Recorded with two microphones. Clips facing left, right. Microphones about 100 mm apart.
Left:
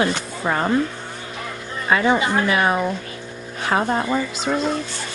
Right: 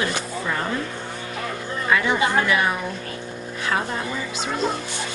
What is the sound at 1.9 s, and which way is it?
A woman's voice, 30° left (ahead or behind).